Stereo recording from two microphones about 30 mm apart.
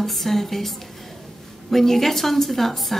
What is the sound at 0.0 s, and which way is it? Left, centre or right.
A woman's voice, centre.